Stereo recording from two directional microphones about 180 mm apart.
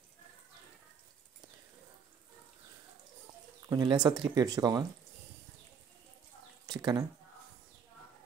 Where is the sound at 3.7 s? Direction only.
20° right (ahead or behind).